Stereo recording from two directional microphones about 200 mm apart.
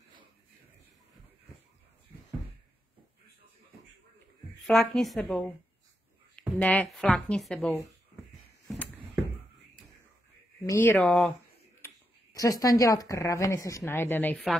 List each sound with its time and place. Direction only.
4.6 s a woman's voice: centre (ahead or behind)
8.7 s a sound: centre (ahead or behind)
10.7 s speech: 10° left (ahead or behind)
11.8 s speech: 15° left (ahead or behind); by 14.6 s centre (ahead or behind)